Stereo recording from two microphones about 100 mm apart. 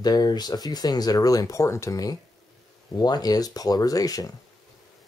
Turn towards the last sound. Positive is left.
turn(degrees=40)  # may be behind; listen again after turning